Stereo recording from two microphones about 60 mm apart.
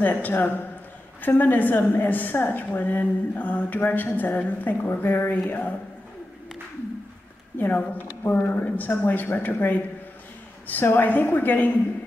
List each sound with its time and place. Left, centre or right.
0.0 s a woman's voice: left
7.5 s a woman's voice: left